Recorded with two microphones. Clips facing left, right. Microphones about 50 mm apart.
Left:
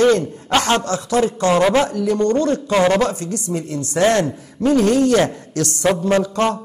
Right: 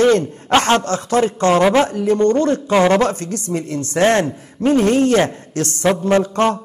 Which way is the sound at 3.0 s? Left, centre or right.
Right.